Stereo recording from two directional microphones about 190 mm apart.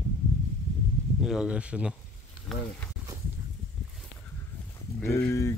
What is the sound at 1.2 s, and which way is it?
Speech, 5° right (ahead or behind).